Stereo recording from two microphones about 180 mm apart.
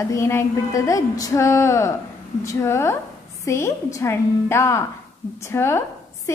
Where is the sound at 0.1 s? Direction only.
15° left (ahead or behind).